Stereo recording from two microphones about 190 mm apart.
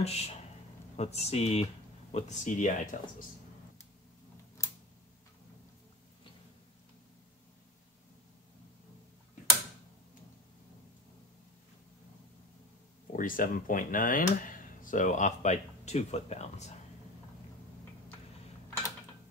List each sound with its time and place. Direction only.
0.0 s speech: 35° left (ahead or behind)
13.1 s speech: 45° left (ahead or behind)